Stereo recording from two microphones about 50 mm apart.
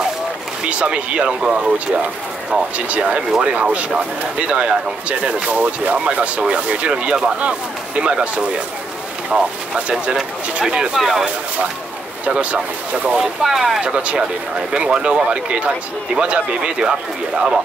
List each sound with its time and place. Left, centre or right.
0.7 s speech: right
2.9 s speech: right; by 11.2 s centre
12.3 s speech: right
13.2 s speech: centre
13.7 s speech: centre